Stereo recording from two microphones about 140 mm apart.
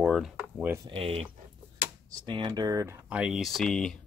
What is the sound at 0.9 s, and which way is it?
Speech, 45° right (ahead or behind).